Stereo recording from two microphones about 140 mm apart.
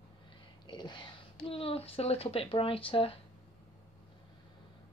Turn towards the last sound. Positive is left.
turn(degrees=40)  # may be behind; listen again after turning